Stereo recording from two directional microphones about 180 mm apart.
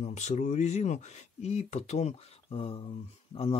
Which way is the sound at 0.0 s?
40° left (ahead or behind).